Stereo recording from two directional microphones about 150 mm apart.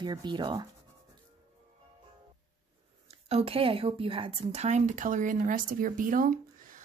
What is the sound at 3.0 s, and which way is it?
A woman's voice, 45° right (ahead or behind).